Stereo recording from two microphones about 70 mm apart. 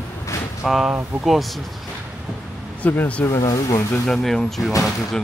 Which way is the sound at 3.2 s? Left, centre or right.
Left.